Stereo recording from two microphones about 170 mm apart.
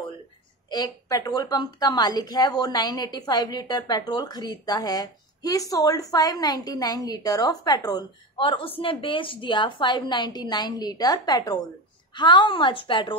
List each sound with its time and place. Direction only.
0.7 s a woman's voice: 25° left (ahead or behind)